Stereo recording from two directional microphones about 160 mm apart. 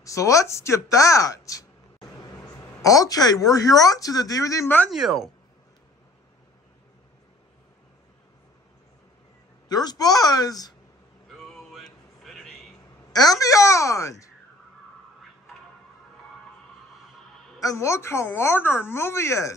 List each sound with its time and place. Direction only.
0.0 s speech: 20° left (ahead or behind)
4.9 s speech: centre (ahead or behind)
9.7 s speech: 25° left (ahead or behind)
11.2 s a sound: 5° left (ahead or behind)
13.1 s speech: 25° left (ahead or behind)
17.6 s a woman's voice: 20° left (ahead or behind)